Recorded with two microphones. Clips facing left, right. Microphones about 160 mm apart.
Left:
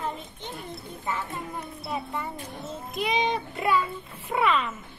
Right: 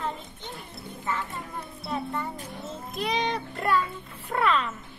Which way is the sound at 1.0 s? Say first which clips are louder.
Even; 15° left (ahead or behind).